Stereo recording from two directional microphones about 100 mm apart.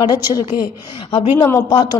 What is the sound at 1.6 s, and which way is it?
Speech, 50° left (ahead or behind).